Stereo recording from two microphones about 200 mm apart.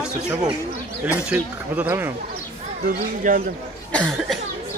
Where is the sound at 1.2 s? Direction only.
5° right (ahead or behind).